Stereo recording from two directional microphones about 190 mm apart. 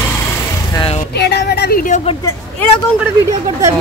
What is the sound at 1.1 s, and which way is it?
Speech, 60° left (ahead or behind).